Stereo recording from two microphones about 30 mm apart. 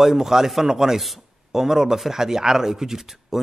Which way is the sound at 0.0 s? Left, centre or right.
Centre.